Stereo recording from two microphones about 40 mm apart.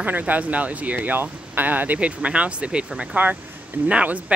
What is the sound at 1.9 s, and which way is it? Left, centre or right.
Speech, right.